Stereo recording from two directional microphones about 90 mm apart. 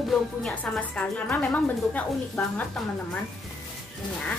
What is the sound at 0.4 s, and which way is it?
A woman's voice, 15° left (ahead or behind).